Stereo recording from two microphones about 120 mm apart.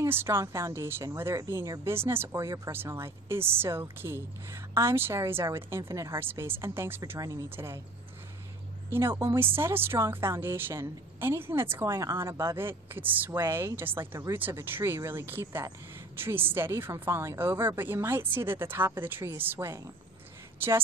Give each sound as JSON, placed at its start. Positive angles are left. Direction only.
{"t": 0.0, "sound": "speech", "side_deg": -20}
{"t": 8.9, "sound": "a woman's voice", "side_deg": -20}